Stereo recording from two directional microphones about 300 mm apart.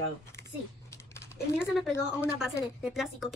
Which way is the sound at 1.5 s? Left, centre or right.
Centre.